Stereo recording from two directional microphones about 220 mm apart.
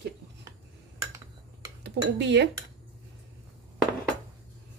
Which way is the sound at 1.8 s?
50° right (ahead or behind).